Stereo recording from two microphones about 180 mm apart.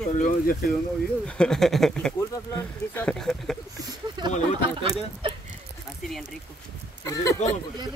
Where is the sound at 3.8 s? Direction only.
25° right (ahead or behind).